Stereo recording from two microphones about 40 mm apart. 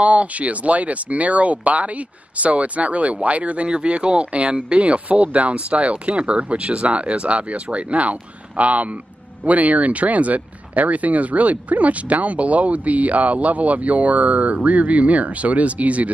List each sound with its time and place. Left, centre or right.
0.0 s speech: right